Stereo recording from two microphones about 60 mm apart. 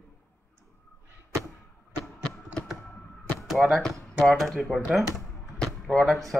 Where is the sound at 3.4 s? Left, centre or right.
Centre.